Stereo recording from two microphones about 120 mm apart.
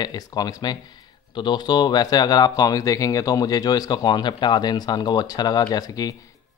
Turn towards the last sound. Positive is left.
turn(degrees=30)  # may be behind; listen again after turning